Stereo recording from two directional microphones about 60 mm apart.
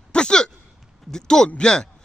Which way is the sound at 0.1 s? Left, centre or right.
Centre.